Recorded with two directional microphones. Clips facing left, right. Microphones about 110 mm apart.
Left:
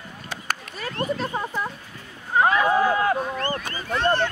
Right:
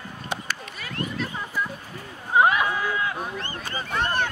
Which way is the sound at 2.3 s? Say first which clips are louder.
Even; 15° right (ahead or behind).